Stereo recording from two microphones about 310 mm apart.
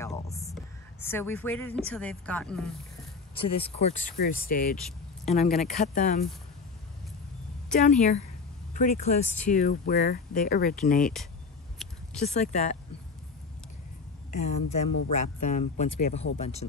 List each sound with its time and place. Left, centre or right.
0.0 s music: centre
1.0 s speech: centre
3.3 s speech: centre
8.7 s speech: left
12.2 s speech: left
14.5 s speech: left